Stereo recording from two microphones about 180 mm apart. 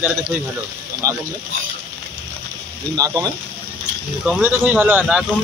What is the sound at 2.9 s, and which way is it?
Speech, 20° right (ahead or behind).